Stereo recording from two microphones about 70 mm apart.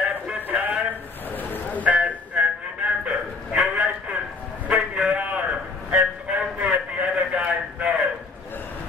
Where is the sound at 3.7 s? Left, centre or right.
Centre.